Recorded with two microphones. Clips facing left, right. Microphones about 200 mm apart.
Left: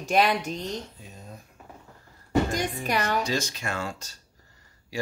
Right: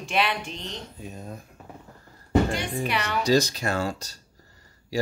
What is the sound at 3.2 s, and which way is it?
Speech, 35° right (ahead or behind).